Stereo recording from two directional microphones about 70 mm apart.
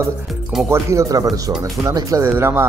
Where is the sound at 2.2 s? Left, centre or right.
Right.